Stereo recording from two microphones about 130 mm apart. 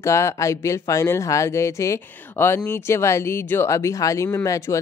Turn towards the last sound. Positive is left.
turn(degrees=25)  # may be behind; listen again after turning